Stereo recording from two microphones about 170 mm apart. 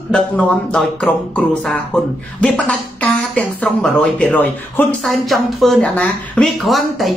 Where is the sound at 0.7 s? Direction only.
5° left (ahead or behind).